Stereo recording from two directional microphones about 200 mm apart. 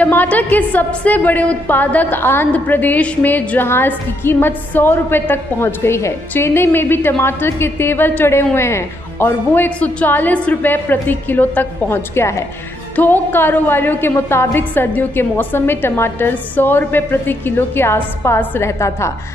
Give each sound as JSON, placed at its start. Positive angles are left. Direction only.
{"t": 0.0, "sound": "a woman's voice", "side_deg": 10}